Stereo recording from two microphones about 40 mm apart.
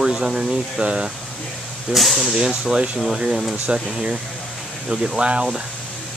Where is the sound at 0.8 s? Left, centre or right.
Right.